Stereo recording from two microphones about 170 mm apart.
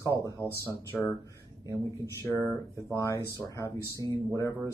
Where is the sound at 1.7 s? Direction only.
20° right (ahead or behind).